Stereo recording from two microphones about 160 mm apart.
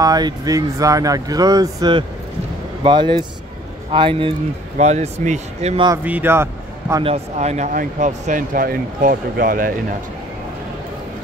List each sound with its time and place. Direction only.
0.0 s speech: 25° right (ahead or behind)
4.7 s speech: 45° right (ahead or behind)
6.0 s speech: 10° right (ahead or behind)
7.3 s speech: 45° right (ahead or behind)